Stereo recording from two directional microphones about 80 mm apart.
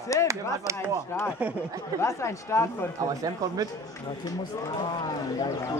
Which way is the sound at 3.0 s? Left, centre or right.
Right.